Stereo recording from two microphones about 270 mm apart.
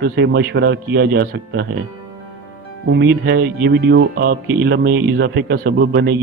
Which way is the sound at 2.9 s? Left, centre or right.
Right.